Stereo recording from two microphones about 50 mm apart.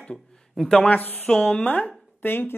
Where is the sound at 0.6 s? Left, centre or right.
Centre.